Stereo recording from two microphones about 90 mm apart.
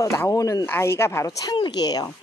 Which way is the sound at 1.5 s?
55° left (ahead or behind).